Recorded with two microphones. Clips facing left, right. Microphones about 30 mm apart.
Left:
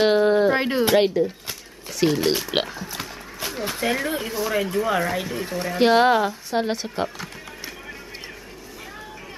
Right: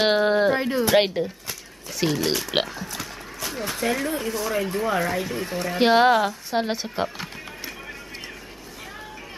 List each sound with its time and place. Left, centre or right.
0.0 s a sound: centre
0.6 s speech: left
0.9 s speech: right
2.1 s speech: centre
2.4 s speech: centre